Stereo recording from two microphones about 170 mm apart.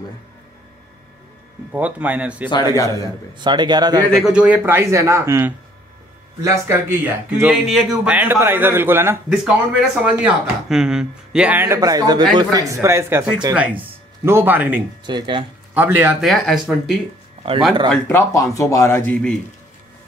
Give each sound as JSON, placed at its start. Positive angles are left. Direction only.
{"t": 1.7, "sound": "speech", "side_deg": -10}
{"t": 2.5, "sound": "a man's voice", "side_deg": 20}
{"t": 3.3, "sound": "speech", "side_deg": -25}
{"t": 4.0, "sound": "speech", "side_deg": 0}
{"t": 15.0, "sound": "speech", "side_deg": -25}
{"t": 15.7, "sound": "speech", "side_deg": -10}
{"t": 16.3, "sound": "speech", "side_deg": 0}
{"t": 17.8, "sound": "speech", "side_deg": 15}